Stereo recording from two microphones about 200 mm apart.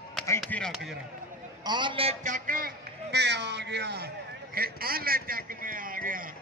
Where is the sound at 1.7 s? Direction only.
25° right (ahead or behind).